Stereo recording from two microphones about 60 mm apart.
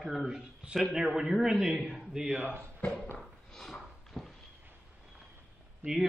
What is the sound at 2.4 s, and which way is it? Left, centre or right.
Speech, right.